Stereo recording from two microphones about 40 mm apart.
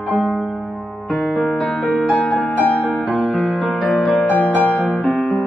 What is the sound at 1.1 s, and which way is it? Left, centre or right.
Music, centre.